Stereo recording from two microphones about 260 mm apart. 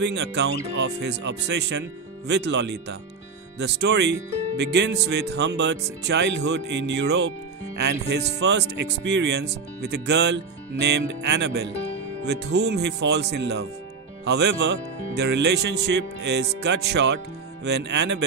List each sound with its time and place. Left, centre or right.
0.0 s speech: right